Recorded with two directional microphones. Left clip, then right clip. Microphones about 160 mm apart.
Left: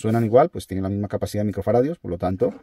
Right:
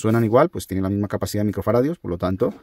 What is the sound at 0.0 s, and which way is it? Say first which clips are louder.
Speech: even; 30° right (ahead or behind).